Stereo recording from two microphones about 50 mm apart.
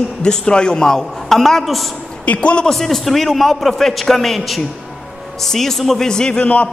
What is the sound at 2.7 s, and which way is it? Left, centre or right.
A man's voice, centre.